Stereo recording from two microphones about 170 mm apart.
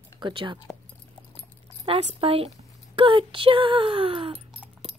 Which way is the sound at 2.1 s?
35° right (ahead or behind).